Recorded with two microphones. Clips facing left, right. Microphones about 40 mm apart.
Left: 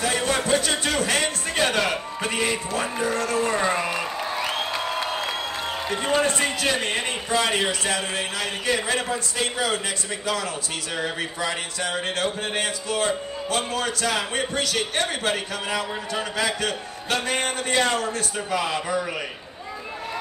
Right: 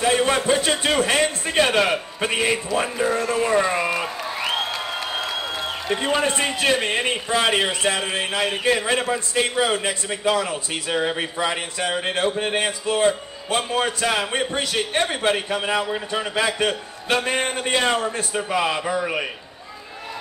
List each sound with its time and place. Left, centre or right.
0.0 s a man's voice: right
3.7 s a sound: centre
5.9 s a man's voice: centre